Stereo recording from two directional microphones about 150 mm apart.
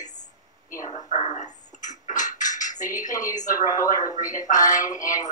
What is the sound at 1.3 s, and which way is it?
Dishes, 55° left (ahead or behind).